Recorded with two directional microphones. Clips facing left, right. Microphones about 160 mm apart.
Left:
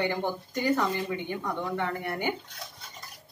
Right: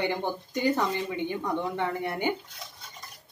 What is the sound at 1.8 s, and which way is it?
Speech, 20° right (ahead or behind).